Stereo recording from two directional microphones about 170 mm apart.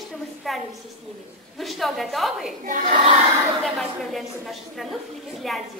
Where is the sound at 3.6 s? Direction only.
Centre (ahead or behind).